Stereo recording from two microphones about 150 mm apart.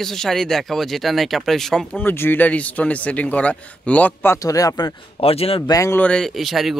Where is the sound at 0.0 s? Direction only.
5° left (ahead or behind); by 4.9 s 25° left (ahead or behind).